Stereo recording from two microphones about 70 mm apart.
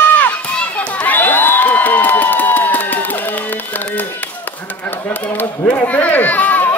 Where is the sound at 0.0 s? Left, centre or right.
Left.